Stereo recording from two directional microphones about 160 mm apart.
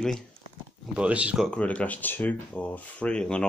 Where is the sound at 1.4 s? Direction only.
10° left (ahead or behind).